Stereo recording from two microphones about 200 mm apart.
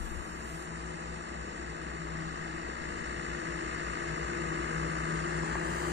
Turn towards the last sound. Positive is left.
turn(degrees=-55)  # may be behind; listen again after turning